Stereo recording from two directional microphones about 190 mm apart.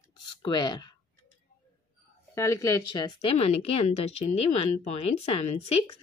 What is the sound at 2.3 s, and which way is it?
A woman's voice, 15° left (ahead or behind).